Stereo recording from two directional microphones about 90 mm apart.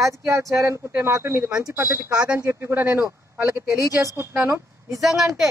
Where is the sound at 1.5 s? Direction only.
10° right (ahead or behind).